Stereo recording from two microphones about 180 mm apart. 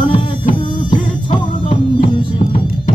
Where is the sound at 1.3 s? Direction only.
30° left (ahead or behind).